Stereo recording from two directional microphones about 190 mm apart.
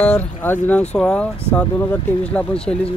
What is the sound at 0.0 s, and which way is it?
Speech, 10° left (ahead or behind).